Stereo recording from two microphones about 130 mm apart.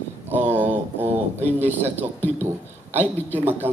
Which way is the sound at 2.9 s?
15° right (ahead or behind).